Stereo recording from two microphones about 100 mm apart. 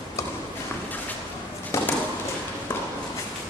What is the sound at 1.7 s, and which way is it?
Chop, 30° left (ahead or behind).